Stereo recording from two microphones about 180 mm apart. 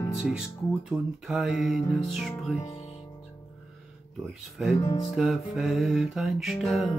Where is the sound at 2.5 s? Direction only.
35° left (ahead or behind).